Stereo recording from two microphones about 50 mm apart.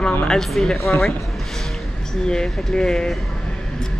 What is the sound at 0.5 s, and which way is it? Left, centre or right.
Speech, centre.